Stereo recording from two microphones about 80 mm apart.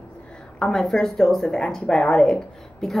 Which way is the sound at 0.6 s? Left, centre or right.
Centre.